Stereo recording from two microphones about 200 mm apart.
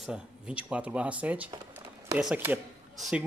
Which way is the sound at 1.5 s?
20° right (ahead or behind).